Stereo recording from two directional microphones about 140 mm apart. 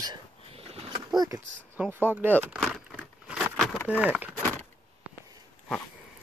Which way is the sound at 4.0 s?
10° right (ahead or behind).